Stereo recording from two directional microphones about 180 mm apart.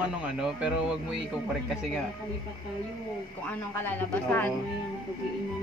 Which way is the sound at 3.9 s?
10° left (ahead or behind).